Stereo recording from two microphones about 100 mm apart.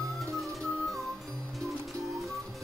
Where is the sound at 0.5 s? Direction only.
Centre (ahead or behind).